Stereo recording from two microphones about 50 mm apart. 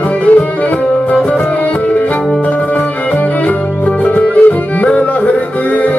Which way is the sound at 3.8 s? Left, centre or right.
Left.